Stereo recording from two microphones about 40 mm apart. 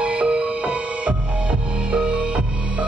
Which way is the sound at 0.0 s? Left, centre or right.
Right.